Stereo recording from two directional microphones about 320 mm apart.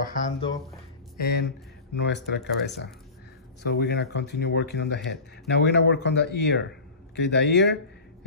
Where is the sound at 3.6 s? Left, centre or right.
Left.